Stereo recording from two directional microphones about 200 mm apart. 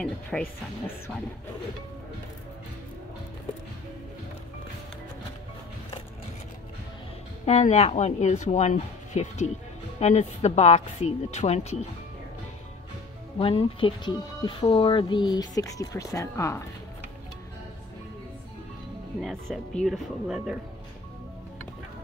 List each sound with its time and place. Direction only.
0.3 s speech: centre (ahead or behind)
7.4 s speech: 35° left (ahead or behind)
13.4 s speech: 25° left (ahead or behind)
19.5 s speech: centre (ahead or behind)